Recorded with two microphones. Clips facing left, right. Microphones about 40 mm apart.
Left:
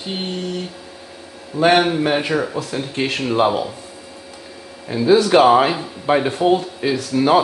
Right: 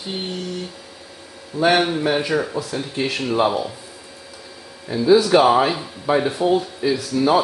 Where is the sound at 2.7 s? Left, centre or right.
Left.